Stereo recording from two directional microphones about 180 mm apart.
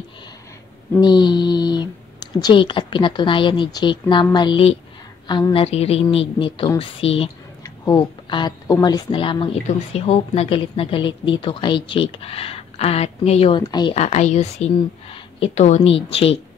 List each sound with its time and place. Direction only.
1.0 s a woman's voice: 25° left (ahead or behind)
7.6 s a sound: 20° left (ahead or behind)
8.8 s a woman's voice: 25° left (ahead or behind)
13.6 s speech: 25° left (ahead or behind)
13.9 s a woman's voice: 40° left (ahead or behind)